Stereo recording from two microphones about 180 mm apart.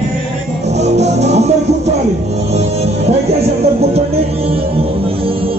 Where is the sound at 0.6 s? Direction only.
40° right (ahead or behind).